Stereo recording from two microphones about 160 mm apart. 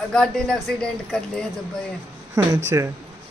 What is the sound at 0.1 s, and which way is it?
Speech, 5° left (ahead or behind).